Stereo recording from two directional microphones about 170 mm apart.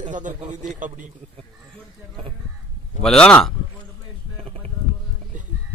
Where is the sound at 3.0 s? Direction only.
5° left (ahead or behind).